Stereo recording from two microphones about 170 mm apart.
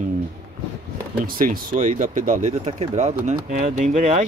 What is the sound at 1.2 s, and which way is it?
Speech, 55° right (ahead or behind).